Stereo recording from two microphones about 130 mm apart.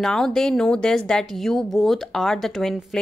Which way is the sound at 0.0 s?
5° left (ahead or behind).